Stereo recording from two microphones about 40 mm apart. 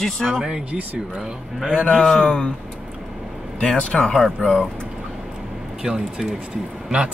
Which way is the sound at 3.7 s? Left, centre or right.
Left.